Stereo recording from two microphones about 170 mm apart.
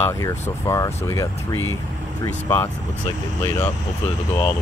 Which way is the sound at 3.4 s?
15° left (ahead or behind).